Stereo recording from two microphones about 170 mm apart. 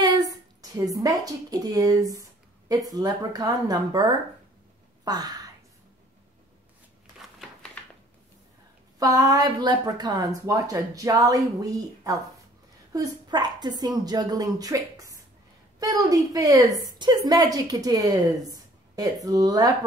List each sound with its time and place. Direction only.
0.0 s a woman's voice: 25° right (ahead or behind)
9.0 s a woman's voice: 20° right (ahead or behind)